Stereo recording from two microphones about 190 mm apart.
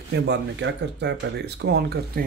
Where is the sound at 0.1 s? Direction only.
65° right (ahead or behind).